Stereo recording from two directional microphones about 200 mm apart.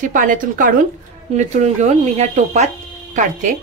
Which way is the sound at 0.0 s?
40° right (ahead or behind).